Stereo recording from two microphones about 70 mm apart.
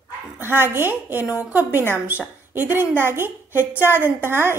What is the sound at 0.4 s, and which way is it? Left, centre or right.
A woman's voice, right.